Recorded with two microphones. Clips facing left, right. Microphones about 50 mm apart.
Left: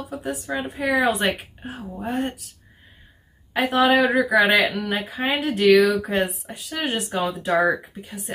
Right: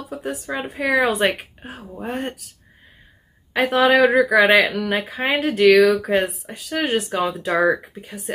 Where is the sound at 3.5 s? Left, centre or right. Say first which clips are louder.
Right 2 dB; right.